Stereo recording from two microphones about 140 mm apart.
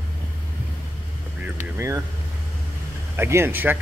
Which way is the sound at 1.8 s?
20° right (ahead or behind).